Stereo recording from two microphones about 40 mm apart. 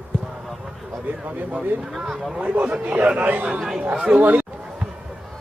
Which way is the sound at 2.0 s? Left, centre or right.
Centre.